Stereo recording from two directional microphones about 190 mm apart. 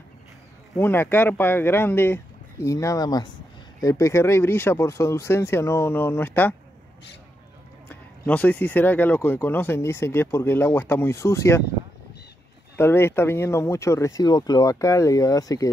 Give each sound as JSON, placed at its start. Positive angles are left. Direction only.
{"t": 0.7, "sound": "speech", "side_deg": 10}
{"t": 8.3, "sound": "speech", "side_deg": 10}
{"t": 12.7, "sound": "speech", "side_deg": 15}